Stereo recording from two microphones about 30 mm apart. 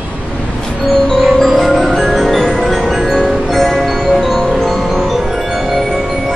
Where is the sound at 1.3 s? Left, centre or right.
Centre.